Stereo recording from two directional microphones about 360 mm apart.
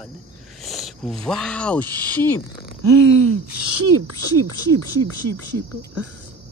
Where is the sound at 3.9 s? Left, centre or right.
Right.